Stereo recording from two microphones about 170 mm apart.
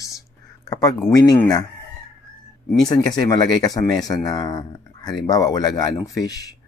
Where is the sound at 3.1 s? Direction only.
25° left (ahead or behind).